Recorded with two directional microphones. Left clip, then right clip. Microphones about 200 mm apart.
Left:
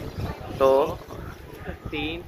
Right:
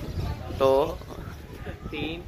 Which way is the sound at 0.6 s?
25° right (ahead or behind).